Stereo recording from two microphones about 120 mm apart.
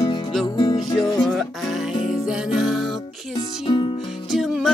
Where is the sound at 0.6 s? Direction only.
40° left (ahead or behind).